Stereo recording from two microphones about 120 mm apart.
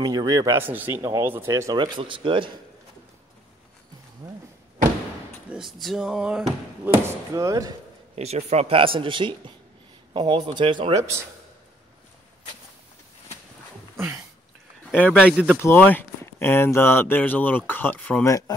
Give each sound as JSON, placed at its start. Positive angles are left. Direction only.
{"t": 0.0, "sound": "speech", "side_deg": -35}
{"t": 0.6, "sound": "speech", "side_deg": -15}
{"t": 4.2, "sound": "speech", "side_deg": -25}
{"t": 5.5, "sound": "speech", "side_deg": 0}
{"t": 7.3, "sound": "speech", "side_deg": -30}
{"t": 8.2, "sound": "speech", "side_deg": -60}
{"t": 13.9, "sound": "a sound", "side_deg": -20}
{"t": 14.9, "sound": "a man's voice", "side_deg": 10}
{"t": 15.1, "sound": "speech", "side_deg": -10}
{"t": 15.6, "sound": "speech", "side_deg": 15}